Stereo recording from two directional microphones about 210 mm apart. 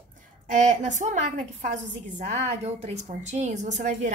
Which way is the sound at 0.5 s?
35° right (ahead or behind).